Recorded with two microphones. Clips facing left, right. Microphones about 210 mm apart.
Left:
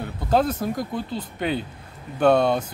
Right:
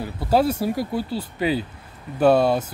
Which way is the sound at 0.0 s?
5° right (ahead or behind).